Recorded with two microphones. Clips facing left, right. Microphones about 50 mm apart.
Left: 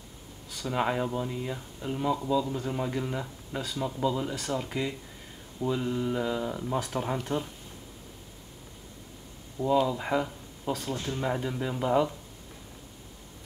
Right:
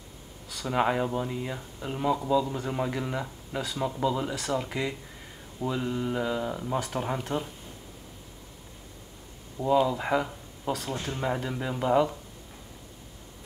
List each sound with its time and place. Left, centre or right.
0.7 s speech: centre
9.6 s speech: centre
11.2 s speech: centre